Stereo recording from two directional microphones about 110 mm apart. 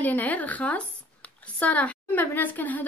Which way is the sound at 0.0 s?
15° left (ahead or behind).